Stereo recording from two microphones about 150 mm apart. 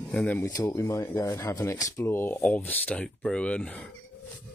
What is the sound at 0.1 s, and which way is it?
Speech, 5° left (ahead or behind).